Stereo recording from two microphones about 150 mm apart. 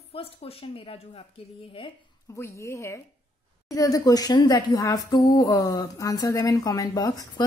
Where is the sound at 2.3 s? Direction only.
20° left (ahead or behind).